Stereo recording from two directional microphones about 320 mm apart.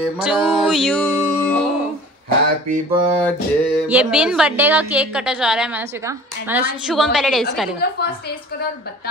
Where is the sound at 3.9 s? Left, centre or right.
Centre.